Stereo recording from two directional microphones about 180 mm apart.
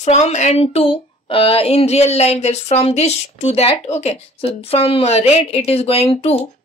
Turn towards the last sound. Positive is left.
turn(degrees=35)  # may be behind; listen again after turning